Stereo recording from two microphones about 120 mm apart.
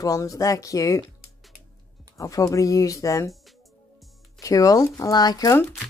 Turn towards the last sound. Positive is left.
turn(degrees=35)  # may be behind; listen again after turning